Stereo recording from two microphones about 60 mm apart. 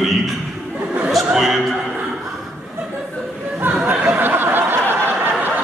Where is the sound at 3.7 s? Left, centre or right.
Right.